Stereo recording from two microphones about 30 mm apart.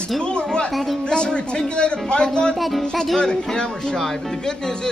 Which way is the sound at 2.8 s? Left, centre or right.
Left.